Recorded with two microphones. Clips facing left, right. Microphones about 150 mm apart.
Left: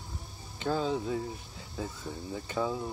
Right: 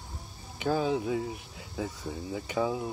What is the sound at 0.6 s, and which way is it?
Speech, 15° right (ahead or behind).